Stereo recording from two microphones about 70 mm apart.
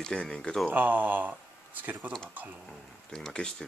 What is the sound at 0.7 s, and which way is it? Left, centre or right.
Speech, right.